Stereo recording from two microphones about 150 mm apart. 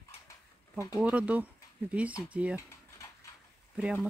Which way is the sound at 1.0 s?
10° right (ahead or behind).